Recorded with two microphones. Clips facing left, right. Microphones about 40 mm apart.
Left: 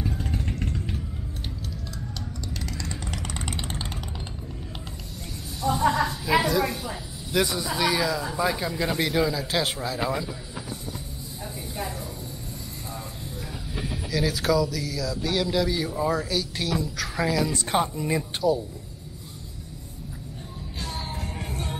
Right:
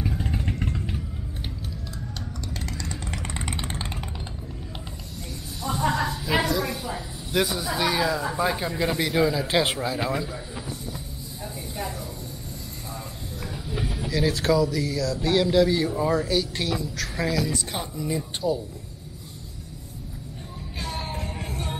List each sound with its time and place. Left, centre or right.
0.0 s vehicle: centre
2.5 s music: right
3.1 s vehicle: right
5.6 s a sound: centre
8.9 s a man's voice: centre
9.2 s speech: centre
13.7 s speech: centre
18.4 s speech: left
21.0 s music: centre